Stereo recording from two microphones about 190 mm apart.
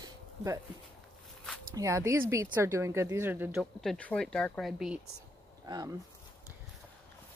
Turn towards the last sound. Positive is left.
turn(degrees=-20)  # may be behind; listen again after turning